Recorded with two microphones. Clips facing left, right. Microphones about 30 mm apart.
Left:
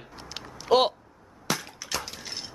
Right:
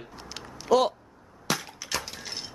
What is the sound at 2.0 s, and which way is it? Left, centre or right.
Mechanisms, centre.